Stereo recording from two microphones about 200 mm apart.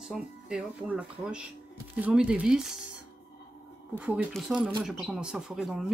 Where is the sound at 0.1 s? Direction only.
5° right (ahead or behind).